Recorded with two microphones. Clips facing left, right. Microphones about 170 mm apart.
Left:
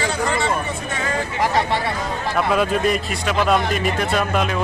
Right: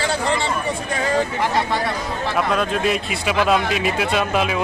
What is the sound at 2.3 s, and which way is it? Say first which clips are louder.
Speech: left 2 dB; 5° left (ahead or behind).